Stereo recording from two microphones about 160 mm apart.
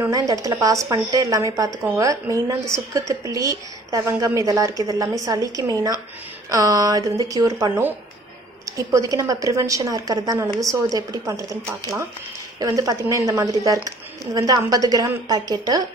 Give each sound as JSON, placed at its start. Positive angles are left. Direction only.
{"t": 0.0, "sound": "a woman's voice", "side_deg": -20}